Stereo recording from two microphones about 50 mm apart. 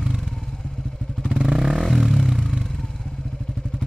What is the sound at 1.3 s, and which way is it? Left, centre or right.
Vehicle, centre.